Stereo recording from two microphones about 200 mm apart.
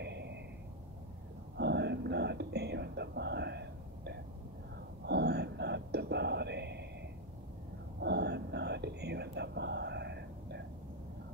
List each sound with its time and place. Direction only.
0.0 s a sound: 55° right (ahead or behind)
1.6 s whispering: 55° right (ahead or behind)
8.0 s whispering: 55° right (ahead or behind)